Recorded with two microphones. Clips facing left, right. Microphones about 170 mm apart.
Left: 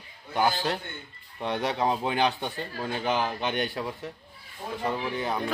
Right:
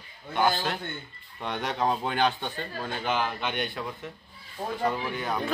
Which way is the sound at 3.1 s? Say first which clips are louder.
Left 2 dB; 35° left (ahead or behind).